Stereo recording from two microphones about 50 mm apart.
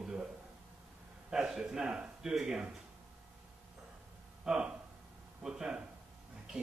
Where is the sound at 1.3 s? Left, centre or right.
Centre.